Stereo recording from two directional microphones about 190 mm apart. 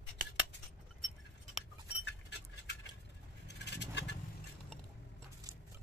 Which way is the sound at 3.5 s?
65° left (ahead or behind).